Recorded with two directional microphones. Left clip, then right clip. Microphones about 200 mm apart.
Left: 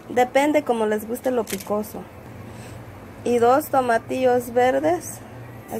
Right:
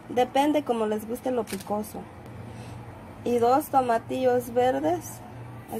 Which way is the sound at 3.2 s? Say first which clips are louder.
Left 5 dB; 5° left (ahead or behind).